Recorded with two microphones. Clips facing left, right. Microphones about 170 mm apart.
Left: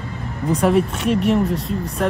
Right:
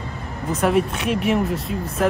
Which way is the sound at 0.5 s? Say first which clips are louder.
Left 2 dB; centre (ahead or behind).